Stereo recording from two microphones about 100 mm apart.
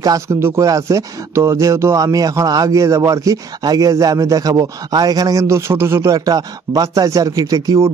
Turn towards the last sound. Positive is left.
turn(degrees=-35)  # may be behind; listen again after turning